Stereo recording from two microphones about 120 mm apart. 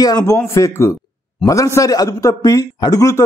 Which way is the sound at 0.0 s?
30° left (ahead or behind).